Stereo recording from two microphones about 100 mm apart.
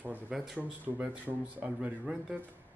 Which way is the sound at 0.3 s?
5° right (ahead or behind).